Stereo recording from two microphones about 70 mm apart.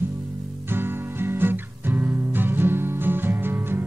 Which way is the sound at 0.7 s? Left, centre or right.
Right.